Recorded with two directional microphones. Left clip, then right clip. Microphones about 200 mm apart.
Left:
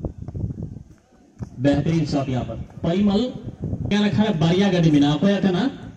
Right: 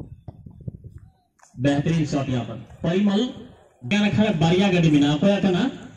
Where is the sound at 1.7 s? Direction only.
50° right (ahead or behind).